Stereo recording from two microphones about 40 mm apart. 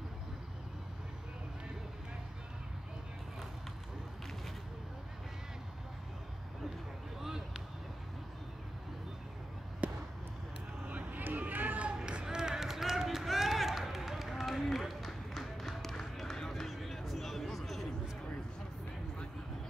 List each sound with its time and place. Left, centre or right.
7.2 s a sound: centre
9.8 s basketball bounce: right
10.9 s run: right
11.9 s run: right; by 17.8 s centre